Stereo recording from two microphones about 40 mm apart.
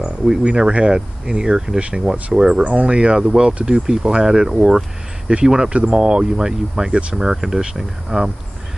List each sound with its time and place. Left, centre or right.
0.0 s a sound: centre
0.4 s speech: right
2.6 s speech: right; by 5.7 s centre
5.7 s speech: right